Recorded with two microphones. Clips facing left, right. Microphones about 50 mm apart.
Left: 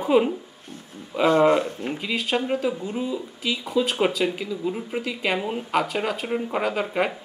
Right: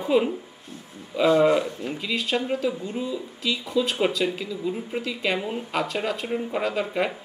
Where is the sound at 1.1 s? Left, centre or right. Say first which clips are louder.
Even; left.